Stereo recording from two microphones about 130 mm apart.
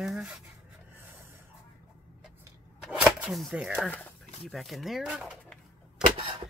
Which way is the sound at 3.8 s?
10° left (ahead or behind).